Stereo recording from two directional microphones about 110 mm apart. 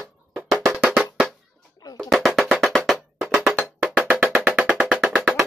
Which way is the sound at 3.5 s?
10° left (ahead or behind).